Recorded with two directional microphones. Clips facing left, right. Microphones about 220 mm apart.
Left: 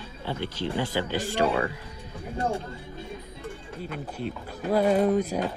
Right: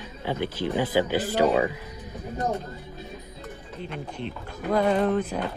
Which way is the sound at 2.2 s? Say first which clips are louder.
Even; 30° left (ahead or behind).